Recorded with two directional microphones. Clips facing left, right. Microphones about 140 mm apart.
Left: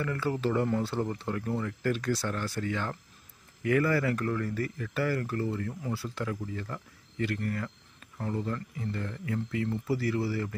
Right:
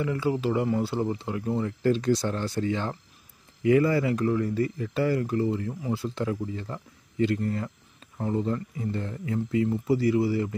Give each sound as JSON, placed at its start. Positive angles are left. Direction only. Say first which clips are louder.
{"t": 0.0, "sound": "speech", "louder": "right 4 dB", "side_deg": -15}